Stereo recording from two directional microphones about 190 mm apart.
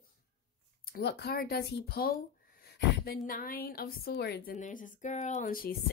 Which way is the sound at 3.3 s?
50° left (ahead or behind).